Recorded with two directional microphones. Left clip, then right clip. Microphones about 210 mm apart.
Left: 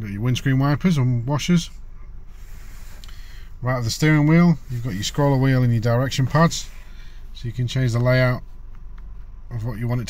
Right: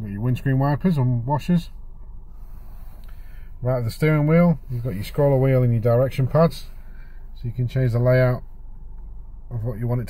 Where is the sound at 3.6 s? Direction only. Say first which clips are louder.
Even; 5° left (ahead or behind).